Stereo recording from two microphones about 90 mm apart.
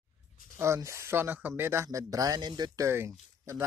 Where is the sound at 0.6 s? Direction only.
30° right (ahead or behind); by 2.8 s 50° right (ahead or behind).